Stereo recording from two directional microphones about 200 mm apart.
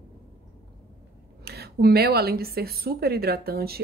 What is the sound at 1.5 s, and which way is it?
Speech, 50° right (ahead or behind).